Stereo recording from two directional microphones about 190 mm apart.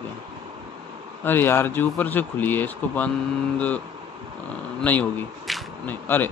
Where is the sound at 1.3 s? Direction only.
10° left (ahead or behind).